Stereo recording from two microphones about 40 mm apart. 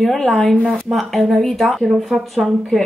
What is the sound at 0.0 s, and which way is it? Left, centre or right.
Speech, centre.